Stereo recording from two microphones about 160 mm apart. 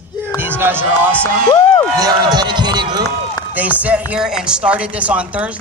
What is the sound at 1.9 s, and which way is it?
Speech, 25° right (ahead or behind).